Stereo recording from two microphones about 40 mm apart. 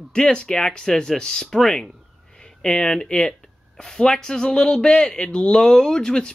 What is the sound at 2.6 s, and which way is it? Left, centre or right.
A man's voice, centre.